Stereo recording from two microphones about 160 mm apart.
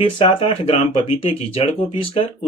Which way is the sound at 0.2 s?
35° left (ahead or behind).